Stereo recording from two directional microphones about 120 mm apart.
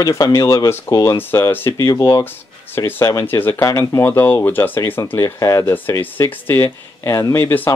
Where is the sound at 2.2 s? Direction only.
15° left (ahead or behind).